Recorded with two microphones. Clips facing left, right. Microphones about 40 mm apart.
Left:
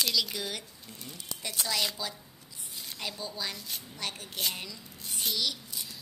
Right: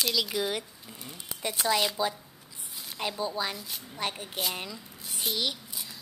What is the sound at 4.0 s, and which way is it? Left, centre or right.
Speech, right.